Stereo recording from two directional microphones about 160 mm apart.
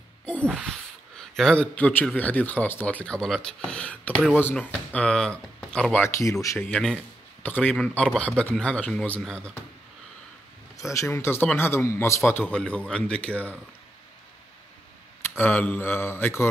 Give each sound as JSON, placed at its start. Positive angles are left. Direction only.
{"t": 0.2, "sound": "a sound", "side_deg": 10}
{"t": 0.6, "sound": "speech", "side_deg": 0}
{"t": 6.0, "sound": "speech", "side_deg": 20}
{"t": 6.7, "sound": "a man's voice", "side_deg": 5}
{"t": 10.8, "sound": "speech", "side_deg": 20}
{"t": 15.2, "sound": "speech", "side_deg": 15}